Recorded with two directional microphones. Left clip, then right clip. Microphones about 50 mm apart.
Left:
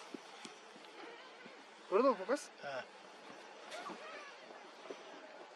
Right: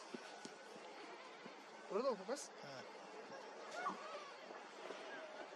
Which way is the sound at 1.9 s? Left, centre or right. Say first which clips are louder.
Left 9 dB; left.